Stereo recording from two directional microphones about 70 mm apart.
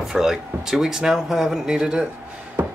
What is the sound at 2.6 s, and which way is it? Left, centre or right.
Music, right.